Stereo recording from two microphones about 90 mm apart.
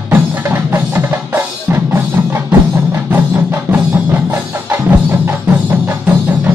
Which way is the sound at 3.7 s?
35° right (ahead or behind).